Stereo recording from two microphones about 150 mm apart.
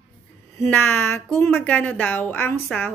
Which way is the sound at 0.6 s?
15° left (ahead or behind).